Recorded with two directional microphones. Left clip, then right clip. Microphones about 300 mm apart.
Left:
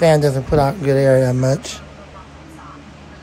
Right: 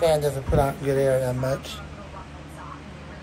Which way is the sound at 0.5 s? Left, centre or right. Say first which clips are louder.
Left 6 dB; left.